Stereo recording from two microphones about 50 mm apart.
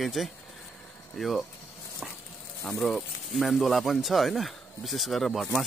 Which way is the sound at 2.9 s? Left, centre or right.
Centre.